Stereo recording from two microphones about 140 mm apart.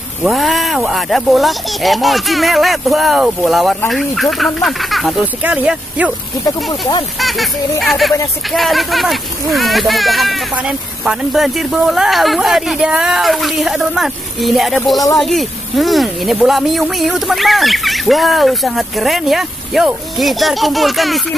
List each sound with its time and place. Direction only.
0.2 s speech: centre (ahead or behind)
5.2 s speech: 10° right (ahead or behind)
6.4 s speech: 30° left (ahead or behind)
7.2 s speech: centre (ahead or behind)